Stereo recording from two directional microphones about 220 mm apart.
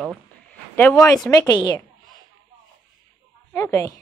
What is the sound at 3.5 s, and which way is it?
Speech, 15° left (ahead or behind).